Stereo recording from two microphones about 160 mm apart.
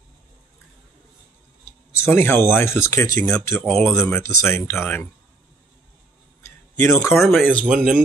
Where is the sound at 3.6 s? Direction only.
5° left (ahead or behind).